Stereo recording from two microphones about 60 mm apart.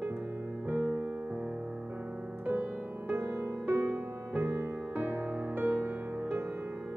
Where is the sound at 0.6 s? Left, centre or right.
Right.